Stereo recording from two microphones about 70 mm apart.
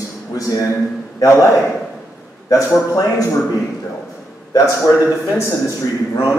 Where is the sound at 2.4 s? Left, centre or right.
Left.